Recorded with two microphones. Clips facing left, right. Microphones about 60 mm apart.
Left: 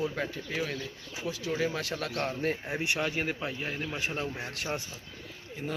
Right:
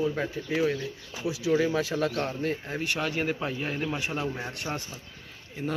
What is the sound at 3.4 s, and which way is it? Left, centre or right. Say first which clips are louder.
Speech: right 4 dB; centre.